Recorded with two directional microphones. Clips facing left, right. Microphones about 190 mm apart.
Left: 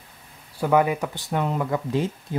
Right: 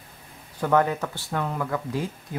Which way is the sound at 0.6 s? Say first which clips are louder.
Left 2 dB; 10° left (ahead or behind).